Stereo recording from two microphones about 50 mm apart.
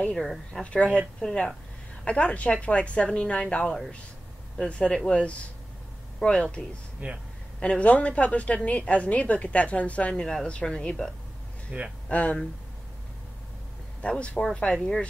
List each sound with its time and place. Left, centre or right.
0.1 s speech: centre
1.2 s a woman's voice: left
7.0 s speech: right
7.6 s a woman's voice: left
10.2 s speech: centre
11.7 s speech: right
12.1 s a woman's voice: left
14.0 s a woman's voice: left